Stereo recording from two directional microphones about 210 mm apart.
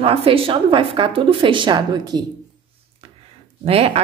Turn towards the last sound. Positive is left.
turn(degrees=-30)  # may be behind; listen again after turning